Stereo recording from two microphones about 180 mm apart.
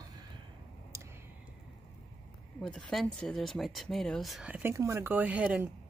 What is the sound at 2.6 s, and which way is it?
Speech, centre (ahead or behind).